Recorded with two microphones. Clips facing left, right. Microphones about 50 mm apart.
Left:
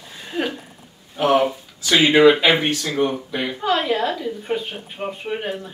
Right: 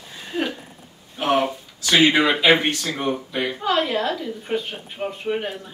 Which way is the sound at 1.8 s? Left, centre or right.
Left.